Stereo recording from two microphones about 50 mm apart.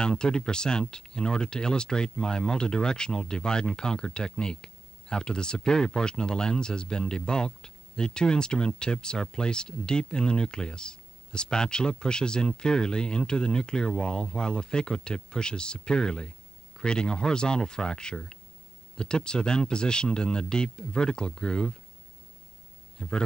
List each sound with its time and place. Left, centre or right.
0.0 s speech: centre
22.9 s a man's voice: centre